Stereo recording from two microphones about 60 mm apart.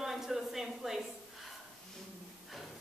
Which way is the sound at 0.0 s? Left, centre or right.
Centre.